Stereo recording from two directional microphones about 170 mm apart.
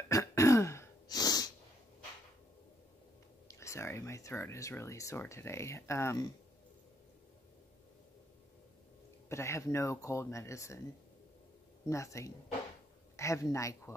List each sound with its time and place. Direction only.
0.1 s throat clearing: 20° left (ahead or behind)
3.4 s speech: 15° left (ahead or behind)
9.3 s speech: 15° left (ahead or behind)
11.9 s speech: 15° left (ahead or behind)